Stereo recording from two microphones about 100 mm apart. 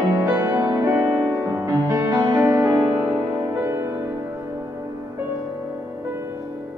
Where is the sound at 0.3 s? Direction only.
25° right (ahead or behind).